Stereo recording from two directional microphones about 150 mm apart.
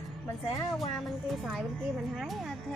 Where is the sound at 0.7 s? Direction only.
Centre (ahead or behind).